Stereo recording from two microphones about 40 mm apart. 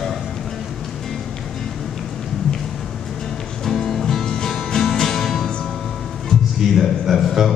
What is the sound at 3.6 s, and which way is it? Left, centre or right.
Music, centre.